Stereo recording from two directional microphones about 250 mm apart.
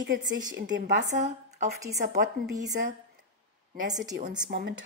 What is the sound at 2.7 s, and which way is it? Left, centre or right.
Speech, right.